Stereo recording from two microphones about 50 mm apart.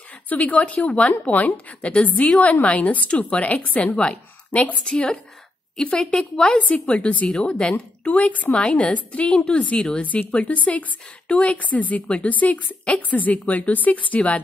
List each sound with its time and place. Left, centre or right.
0.3 s a woman's voice: left
3.9 s a woman's voice: centre
4.5 s a woman's voice: left
4.8 s a woman's voice: centre
9.8 s a woman's voice: centre
10.0 s a woman's voice: left